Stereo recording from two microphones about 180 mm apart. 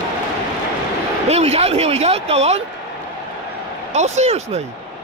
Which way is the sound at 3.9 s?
40° right (ahead or behind).